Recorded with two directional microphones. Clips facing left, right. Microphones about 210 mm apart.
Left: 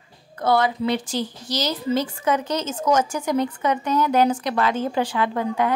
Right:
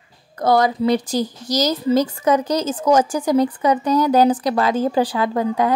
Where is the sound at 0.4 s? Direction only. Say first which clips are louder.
Right 4 dB; 40° right (ahead or behind).